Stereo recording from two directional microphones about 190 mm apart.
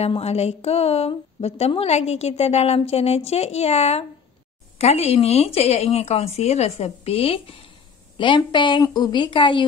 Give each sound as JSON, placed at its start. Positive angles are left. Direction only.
{"t": 0.0, "sound": "a woman's voice", "side_deg": 35}